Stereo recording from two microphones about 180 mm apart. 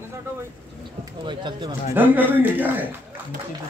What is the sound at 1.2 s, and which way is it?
Speech, 25° right (ahead or behind).